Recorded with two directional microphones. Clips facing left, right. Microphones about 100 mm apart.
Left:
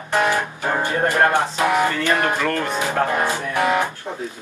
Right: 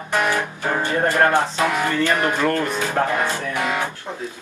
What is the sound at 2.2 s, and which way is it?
Music, 15° right (ahead or behind).